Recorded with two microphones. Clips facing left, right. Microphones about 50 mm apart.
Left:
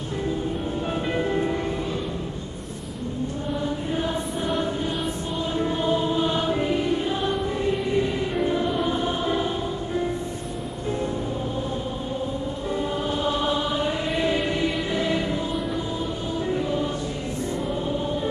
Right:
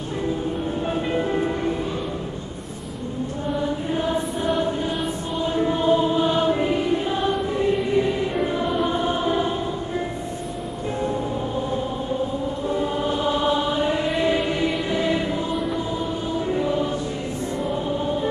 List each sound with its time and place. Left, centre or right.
1.1 s music: centre
5.6 s choir: centre
12.7 s choir: centre
17.8 s music: centre